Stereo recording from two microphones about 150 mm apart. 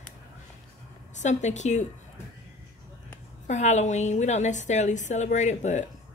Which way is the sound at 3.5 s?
50° left (ahead or behind).